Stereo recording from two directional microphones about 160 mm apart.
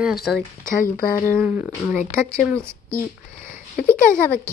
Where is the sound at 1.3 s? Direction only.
10° right (ahead or behind).